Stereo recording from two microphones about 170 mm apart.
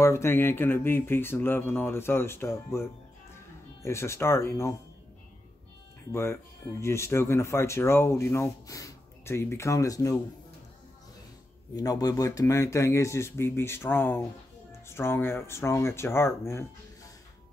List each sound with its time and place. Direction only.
0.0 s speech: 15° left (ahead or behind)
6.8 s speech: 15° left (ahead or behind)
11.7 s speech: 20° left (ahead or behind)